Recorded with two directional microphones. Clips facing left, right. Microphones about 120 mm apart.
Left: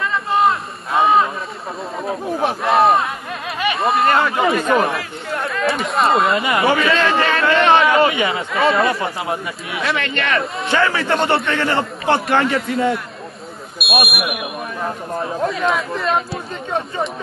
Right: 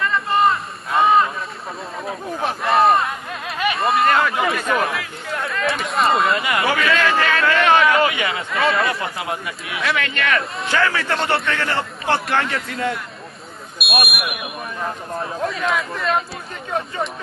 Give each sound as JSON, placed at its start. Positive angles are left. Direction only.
{"t": 0.0, "sound": "a sound", "side_deg": 0}
{"t": 2.0, "sound": "speech", "side_deg": 0}
{"t": 4.1, "sound": "a man's voice", "side_deg": 30}
{"t": 5.5, "sound": "speech", "side_deg": 0}
{"t": 6.4, "sound": "a man's voice", "side_deg": 25}
{"t": 8.5, "sound": "speech", "side_deg": 0}
{"t": 9.0, "sound": "a man's voice", "side_deg": 30}
{"t": 13.7, "sound": "speech", "side_deg": 0}